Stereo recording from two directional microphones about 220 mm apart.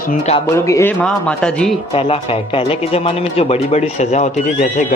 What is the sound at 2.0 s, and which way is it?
A man's voice, 25° left (ahead or behind).